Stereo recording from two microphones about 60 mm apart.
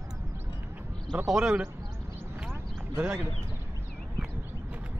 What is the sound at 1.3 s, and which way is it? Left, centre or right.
Speech, centre.